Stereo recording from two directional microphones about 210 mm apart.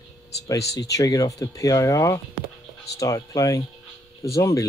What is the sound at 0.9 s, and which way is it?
Speech, 15° left (ahead or behind).